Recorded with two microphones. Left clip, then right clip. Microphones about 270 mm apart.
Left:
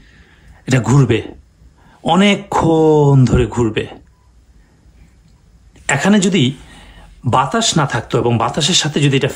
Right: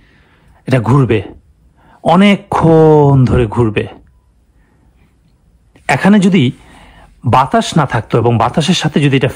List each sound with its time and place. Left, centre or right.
0.0 s a sound: centre
2.0 s speech: centre
5.7 s speech: centre